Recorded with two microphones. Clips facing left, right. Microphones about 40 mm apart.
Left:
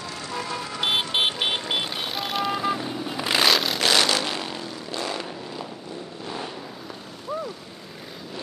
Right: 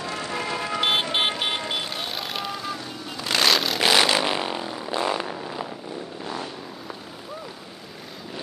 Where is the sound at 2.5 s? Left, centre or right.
Centre.